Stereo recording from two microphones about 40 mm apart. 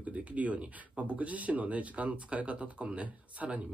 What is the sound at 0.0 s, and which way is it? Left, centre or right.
Speech, right.